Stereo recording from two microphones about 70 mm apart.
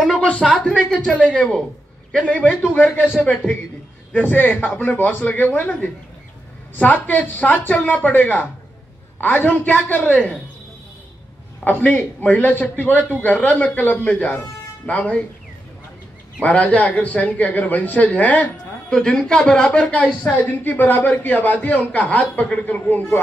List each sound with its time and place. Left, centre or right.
0.0 s a sound: centre
0.5 s a man's voice: centre
4.1 s a man's voice: left
11.6 s a man's voice: left
16.3 s a man's voice: left
18.9 s a man's voice: centre